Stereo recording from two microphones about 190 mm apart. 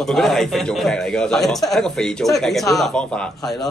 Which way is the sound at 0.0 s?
Centre (ahead or behind).